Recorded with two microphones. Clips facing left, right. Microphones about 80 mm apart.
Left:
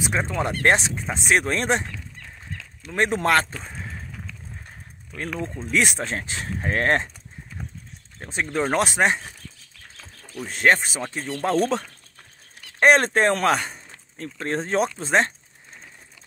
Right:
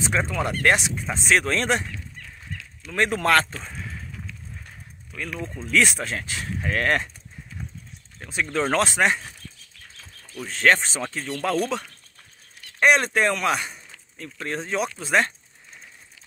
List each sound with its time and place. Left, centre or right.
0.0 s speech: centre
0.3 s speech: left
1.0 s speech: centre
2.9 s speech: left
4.6 s a sound: left
5.7 s speech: left
8.2 s speech: left
8.5 s speech: centre
10.3 s speech: centre
12.8 s speech: left